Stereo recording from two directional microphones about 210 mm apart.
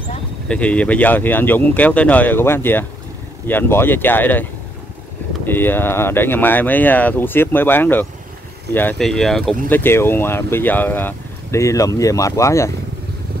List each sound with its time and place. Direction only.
0.5 s speech: 5° left (ahead or behind)